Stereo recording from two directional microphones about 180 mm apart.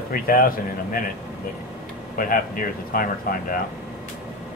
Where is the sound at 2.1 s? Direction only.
50° left (ahead or behind).